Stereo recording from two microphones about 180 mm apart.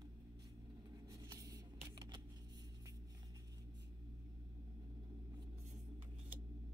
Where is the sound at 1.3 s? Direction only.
20° right (ahead or behind).